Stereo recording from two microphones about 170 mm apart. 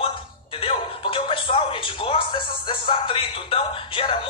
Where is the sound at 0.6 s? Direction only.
30° left (ahead or behind).